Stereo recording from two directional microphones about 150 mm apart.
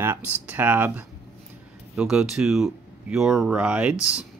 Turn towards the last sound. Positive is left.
turn(degrees=-5)  # may be behind; listen again after turning